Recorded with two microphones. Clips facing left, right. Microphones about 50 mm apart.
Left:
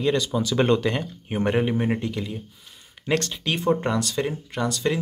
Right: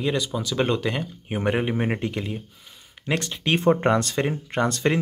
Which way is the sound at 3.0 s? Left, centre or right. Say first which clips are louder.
Left 2 dB; centre.